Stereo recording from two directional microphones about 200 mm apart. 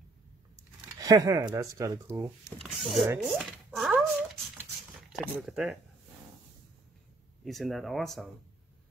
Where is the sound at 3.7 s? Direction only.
Centre (ahead or behind).